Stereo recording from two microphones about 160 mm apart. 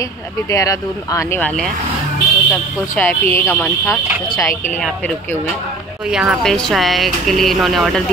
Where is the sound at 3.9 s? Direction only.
20° left (ahead or behind).